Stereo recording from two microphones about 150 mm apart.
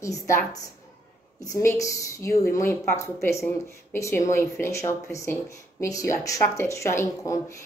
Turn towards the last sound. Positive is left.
turn(degrees=20)  # may be behind; listen again after turning